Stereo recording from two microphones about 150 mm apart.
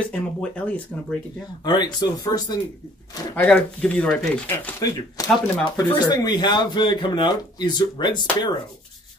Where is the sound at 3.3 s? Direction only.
10° left (ahead or behind).